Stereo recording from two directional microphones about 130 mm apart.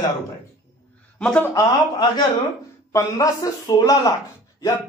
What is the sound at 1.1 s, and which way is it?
Speech, 10° left (ahead or behind).